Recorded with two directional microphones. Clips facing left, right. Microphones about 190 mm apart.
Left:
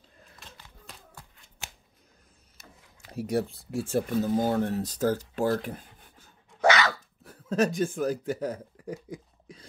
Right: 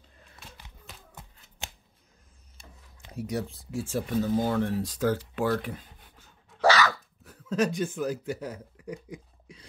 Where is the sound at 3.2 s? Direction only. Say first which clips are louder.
Left 5 dB; 55° left (ahead or behind).